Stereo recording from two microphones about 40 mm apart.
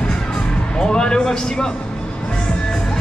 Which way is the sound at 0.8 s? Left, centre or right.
Left.